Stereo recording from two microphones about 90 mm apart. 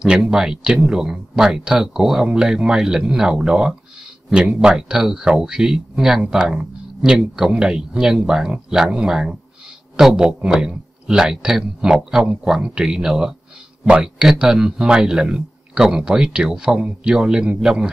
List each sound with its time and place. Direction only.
0.0 s speech: 10° right (ahead or behind)